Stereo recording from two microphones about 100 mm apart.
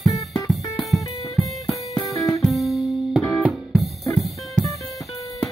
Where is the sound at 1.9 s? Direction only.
35° left (ahead or behind).